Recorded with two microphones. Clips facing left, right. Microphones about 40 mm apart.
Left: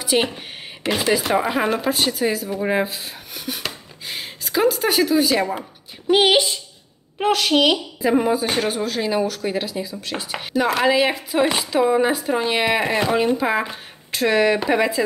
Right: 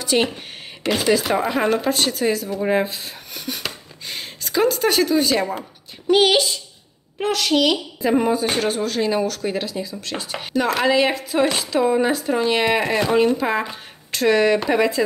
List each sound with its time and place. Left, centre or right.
0.0 s a woman's voice: centre
8.0 s speech: centre